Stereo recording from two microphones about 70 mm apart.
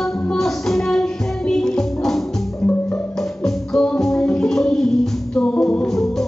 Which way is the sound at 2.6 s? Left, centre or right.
Centre.